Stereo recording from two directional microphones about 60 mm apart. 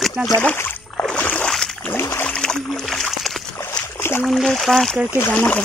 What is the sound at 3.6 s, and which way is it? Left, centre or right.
Boat, left.